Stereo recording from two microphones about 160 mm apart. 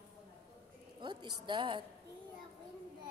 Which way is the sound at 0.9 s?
30° right (ahead or behind).